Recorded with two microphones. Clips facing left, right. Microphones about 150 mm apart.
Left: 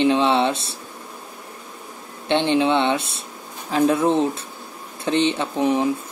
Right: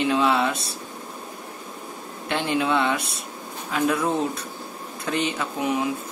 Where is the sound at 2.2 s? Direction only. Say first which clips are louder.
Left 6 dB; 25° left (ahead or behind).